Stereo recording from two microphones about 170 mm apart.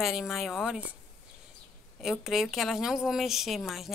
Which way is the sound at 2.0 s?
Centre (ahead or behind).